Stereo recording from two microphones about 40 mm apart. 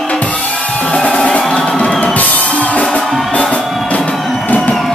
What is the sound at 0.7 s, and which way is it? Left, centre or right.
Music, left.